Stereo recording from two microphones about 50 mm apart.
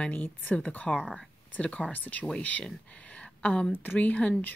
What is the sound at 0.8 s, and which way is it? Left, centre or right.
A woman's voice, left.